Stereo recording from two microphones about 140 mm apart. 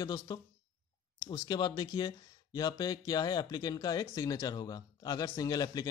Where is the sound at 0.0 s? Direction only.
25° left (ahead or behind).